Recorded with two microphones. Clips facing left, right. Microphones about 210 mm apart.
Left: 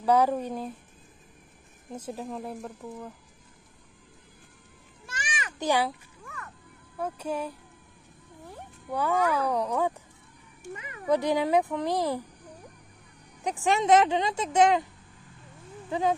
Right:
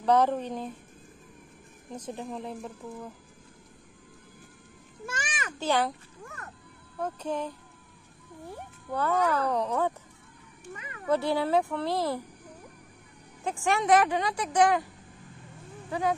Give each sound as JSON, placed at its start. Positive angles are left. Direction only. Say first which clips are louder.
{"t": 0.0, "sound": "speech", "louder": "left 1 dB", "side_deg": 10}
{"t": 1.9, "sound": "speech", "louder": "left 1 dB", "side_deg": 5}
{"t": 5.0, "sound": "children playing", "louder": "right 2 dB", "side_deg": -50}
{"t": 5.6, "sound": "speech", "louder": "left 1 dB", "side_deg": 15}
{"t": 6.2, "sound": "music", "louder": "even", "side_deg": -40}
{"t": 7.0, "sound": "speech", "louder": "even", "side_deg": 10}
{"t": 8.9, "sound": "speech", "louder": "left 1 dB", "side_deg": 10}
{"t": 13.4, "sound": "speech", "louder": "left 2 dB", "side_deg": 20}
{"t": 15.9, "sound": "speech", "louder": "left 2 dB", "side_deg": 25}